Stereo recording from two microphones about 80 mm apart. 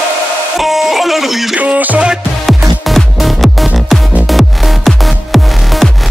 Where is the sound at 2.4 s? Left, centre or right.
Centre.